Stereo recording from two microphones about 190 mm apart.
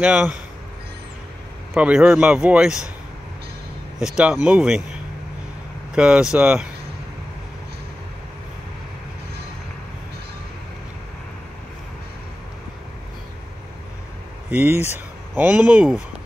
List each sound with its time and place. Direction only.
0.0 s speech: 5° right (ahead or behind)
1.7 s a man's voice: 5° right (ahead or behind)
4.0 s a man's voice: 5° right (ahead or behind)
5.9 s a man's voice: 5° right (ahead or behind)
14.5 s speech: 10° right (ahead or behind)